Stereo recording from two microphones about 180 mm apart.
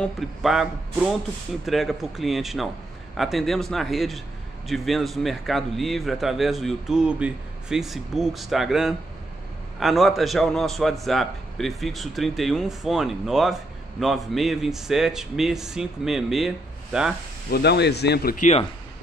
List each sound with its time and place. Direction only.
0.0 s a man's voice: centre (ahead or behind)
1.7 s a man's voice: centre (ahead or behind)
17.5 s speech: 65° left (ahead or behind); by 18.6 s 45° left (ahead or behind)